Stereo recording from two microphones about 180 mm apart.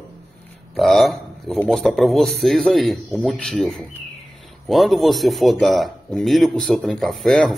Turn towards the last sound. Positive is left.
turn(degrees=0)  # may be behind; listen again after turning